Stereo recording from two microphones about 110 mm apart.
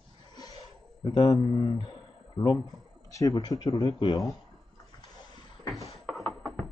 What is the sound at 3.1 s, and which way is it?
Speech, 30° left (ahead or behind).